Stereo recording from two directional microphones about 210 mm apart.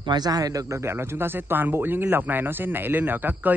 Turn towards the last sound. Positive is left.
turn(degrees=-10)  # may be behind; listen again after turning